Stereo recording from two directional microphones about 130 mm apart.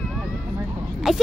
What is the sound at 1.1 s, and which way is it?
Speech, 5° right (ahead or behind).